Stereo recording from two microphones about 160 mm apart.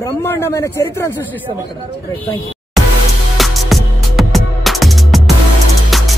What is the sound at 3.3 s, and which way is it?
Music, centre (ahead or behind).